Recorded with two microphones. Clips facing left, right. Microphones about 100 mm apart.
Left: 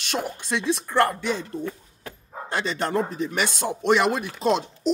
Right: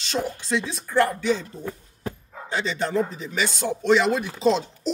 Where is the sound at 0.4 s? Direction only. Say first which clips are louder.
Left 2 dB; 55° left (ahead or behind).